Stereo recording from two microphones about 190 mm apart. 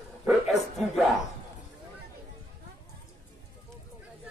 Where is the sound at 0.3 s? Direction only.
Centre (ahead or behind).